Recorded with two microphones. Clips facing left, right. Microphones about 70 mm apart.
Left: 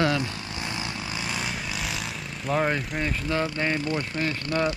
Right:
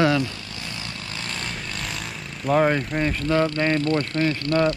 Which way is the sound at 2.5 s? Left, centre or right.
Right.